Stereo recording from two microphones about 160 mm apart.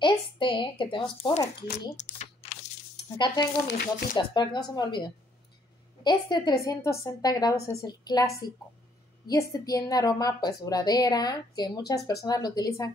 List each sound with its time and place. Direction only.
0.0 s a woman's voice: 30° left (ahead or behind)
1.7 s a sound: 45° left (ahead or behind)
3.6 s speech: 80° left
4.1 s a woman's voice: 30° left (ahead or behind)
9.3 s a woman's voice: 20° left (ahead or behind)